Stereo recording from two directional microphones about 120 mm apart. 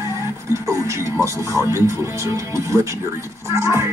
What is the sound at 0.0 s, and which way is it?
Music, 25° right (ahead or behind).